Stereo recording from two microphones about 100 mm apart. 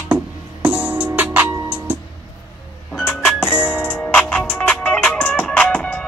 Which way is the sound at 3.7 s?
20° left (ahead or behind).